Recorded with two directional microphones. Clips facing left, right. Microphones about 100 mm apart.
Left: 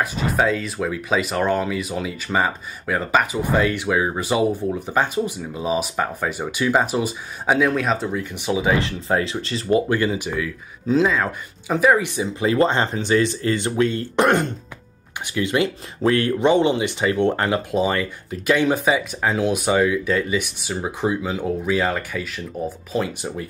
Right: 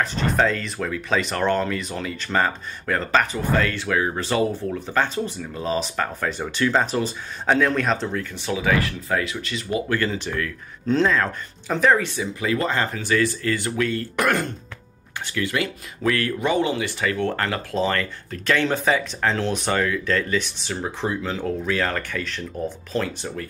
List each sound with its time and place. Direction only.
0.0 s speech: 10° left (ahead or behind)
8.1 s speech: 15° left (ahead or behind); by 9.8 s 30° left (ahead or behind)
9.8 s speech: 15° left (ahead or behind)
12.2 s speech: 25° left (ahead or behind)